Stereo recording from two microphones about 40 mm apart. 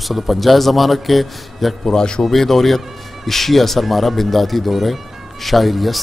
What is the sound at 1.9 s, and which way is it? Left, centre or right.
Speech, left.